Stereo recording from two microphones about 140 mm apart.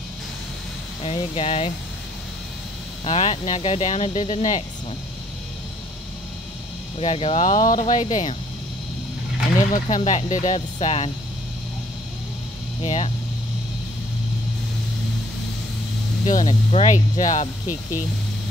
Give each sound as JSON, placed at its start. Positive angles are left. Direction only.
{"t": 1.0, "sound": "speech", "side_deg": 40}
{"t": 3.1, "sound": "speech", "side_deg": 55}
{"t": 7.0, "sound": "speech", "side_deg": 50}
{"t": 9.7, "sound": "speech", "side_deg": 60}
{"t": 12.8, "sound": "speech", "side_deg": 50}
{"t": 16.3, "sound": "speech", "side_deg": 65}